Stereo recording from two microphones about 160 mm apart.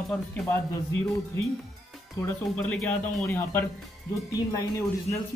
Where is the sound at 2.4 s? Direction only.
5° left (ahead or behind).